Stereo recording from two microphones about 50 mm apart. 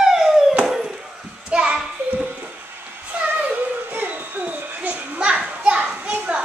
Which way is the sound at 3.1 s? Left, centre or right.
Right.